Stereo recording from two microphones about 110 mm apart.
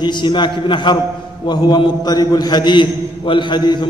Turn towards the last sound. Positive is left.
turn(degrees=45)  # may be behind; listen again after turning